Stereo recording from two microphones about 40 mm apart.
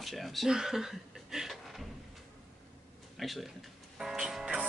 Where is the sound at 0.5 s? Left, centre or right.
Centre.